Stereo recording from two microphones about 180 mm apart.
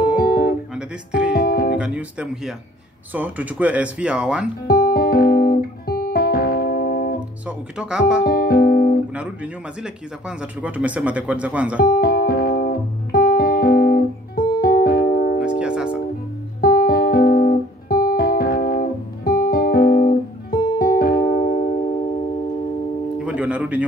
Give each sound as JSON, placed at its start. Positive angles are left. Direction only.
{"t": 0.1, "sound": "music", "side_deg": 50}
{"t": 0.7, "sound": "music", "side_deg": -5}
{"t": 1.4, "sound": "music", "side_deg": 60}
{"t": 1.8, "sound": "speech", "side_deg": -5}
{"t": 4.6, "sound": "guitar", "side_deg": 55}
{"t": 7.4, "sound": "speech", "side_deg": -5}
{"t": 8.3, "sound": "music", "side_deg": 55}
{"t": 9.1, "sound": "speech", "side_deg": -5}
{"t": 11.8, "sound": "music", "side_deg": 55}
{"t": 15.6, "sound": "music", "side_deg": -5}
{"t": 16.6, "sound": "music", "side_deg": 55}
{"t": 23.2, "sound": "music", "side_deg": -5}